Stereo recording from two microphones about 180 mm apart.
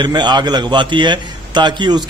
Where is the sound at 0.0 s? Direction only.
25° right (ahead or behind).